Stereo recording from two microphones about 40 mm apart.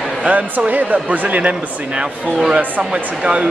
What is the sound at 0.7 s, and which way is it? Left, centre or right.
Speech, right.